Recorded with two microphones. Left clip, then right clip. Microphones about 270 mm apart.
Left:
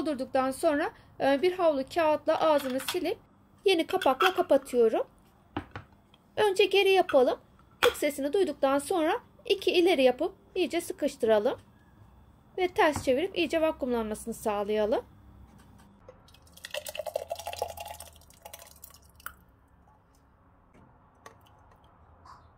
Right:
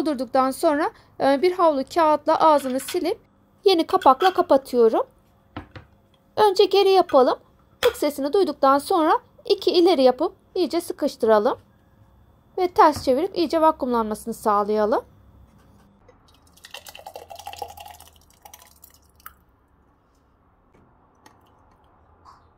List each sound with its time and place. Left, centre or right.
0.0 s speech: right
6.3 s speech: right
12.5 s speech: right